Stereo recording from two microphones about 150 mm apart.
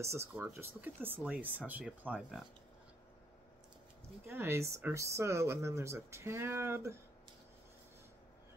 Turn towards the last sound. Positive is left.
turn(degrees=-15)  # may be behind; listen again after turning